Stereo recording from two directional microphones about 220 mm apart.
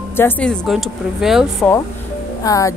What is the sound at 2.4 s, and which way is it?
Speech, 15° left (ahead or behind).